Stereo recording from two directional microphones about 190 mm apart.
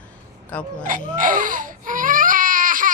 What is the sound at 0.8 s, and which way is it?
Baby cry, 45° right (ahead or behind).